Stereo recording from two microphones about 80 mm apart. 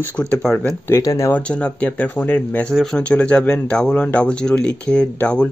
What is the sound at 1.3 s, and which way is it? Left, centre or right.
Speech, centre.